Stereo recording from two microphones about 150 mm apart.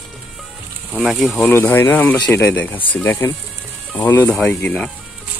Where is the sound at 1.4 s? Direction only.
15° left (ahead or behind).